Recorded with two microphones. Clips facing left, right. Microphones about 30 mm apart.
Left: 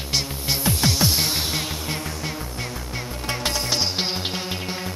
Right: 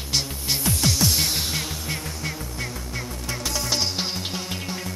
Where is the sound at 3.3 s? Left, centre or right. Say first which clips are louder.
Left 2 dB; left.